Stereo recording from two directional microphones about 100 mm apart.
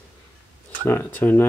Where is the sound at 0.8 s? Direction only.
20° left (ahead or behind).